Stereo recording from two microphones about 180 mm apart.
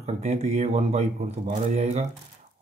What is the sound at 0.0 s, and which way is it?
Speech, 35° right (ahead or behind).